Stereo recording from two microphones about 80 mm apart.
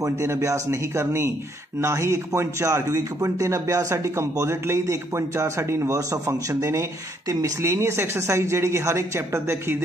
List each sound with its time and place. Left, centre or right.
0.0 s a man's voice: right